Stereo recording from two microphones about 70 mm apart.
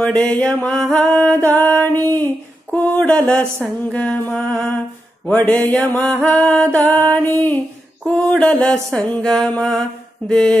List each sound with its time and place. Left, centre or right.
0.0 s mantra: centre
1.4 s mantra: left
3.9 s mantra: centre
8.0 s mantra: centre